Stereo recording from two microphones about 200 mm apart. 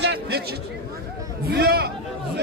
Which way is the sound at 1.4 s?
50° right (ahead or behind).